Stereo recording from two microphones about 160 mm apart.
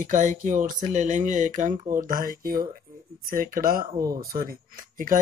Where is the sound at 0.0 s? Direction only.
50° right (ahead or behind).